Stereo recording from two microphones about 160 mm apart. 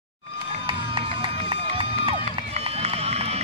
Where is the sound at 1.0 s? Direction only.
35° right (ahead or behind).